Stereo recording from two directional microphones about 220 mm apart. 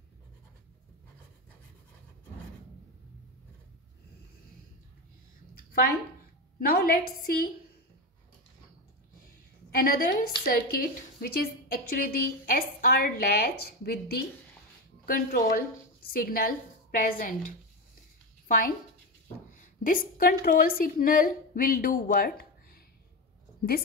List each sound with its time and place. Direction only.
5.5 s a sound: 45° left (ahead or behind)
6.6 s a woman's voice: 40° left (ahead or behind)
9.7 s a woman's voice: 40° left (ahead or behind)
19.8 s a woman's voice: 40° left (ahead or behind)